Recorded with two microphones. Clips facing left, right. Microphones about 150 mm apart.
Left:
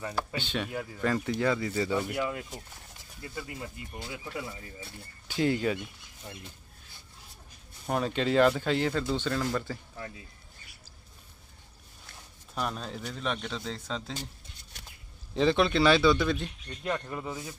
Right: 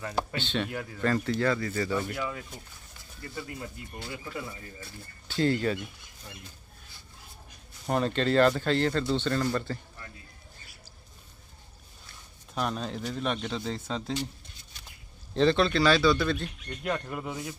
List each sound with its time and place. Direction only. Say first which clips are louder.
0.0 s speech: right 2 dB; 10° left (ahead or behind)
7.8 s speech: right 2 dB; 5° left (ahead or behind)
12.5 s speech: right 3 dB; centre (ahead or behind)
15.3 s speech: right 1 dB; 15° left (ahead or behind)
16.8 s speech: right 1 dB; centre (ahead or behind)
17.3 s speech: right 2 dB; 15° right (ahead or behind)